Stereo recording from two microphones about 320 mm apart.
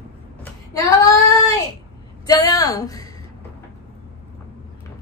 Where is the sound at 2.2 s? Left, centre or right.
Centre.